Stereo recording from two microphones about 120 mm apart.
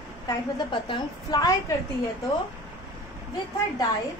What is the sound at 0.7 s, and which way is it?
A woman's voice, 40° left (ahead or behind).